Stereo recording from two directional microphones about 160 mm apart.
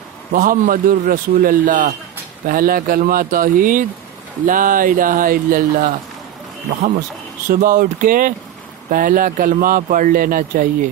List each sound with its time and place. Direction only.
0.3 s speech: 60° right (ahead or behind)
7.4 s speech: 55° right (ahead or behind)